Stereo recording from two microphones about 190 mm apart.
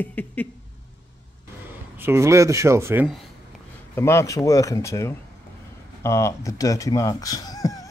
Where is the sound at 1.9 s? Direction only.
10° right (ahead or behind).